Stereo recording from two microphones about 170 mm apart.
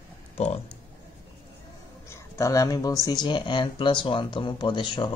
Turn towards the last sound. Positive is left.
turn(degrees=30)  # may be behind; listen again after turning